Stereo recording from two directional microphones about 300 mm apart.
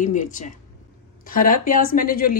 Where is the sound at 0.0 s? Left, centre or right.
Left.